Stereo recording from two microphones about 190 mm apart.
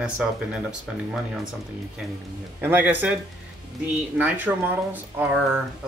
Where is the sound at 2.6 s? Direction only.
10° right (ahead or behind).